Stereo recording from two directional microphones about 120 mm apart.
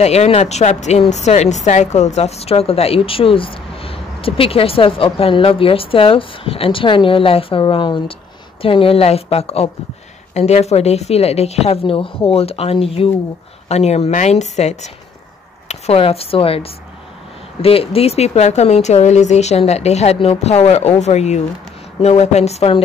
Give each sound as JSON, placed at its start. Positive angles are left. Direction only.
{"t": 0.0, "sound": "a woman's voice", "side_deg": 65}
{"t": 13.7, "sound": "speech", "side_deg": 65}
{"t": 15.7, "sound": "a woman's voice", "side_deg": 55}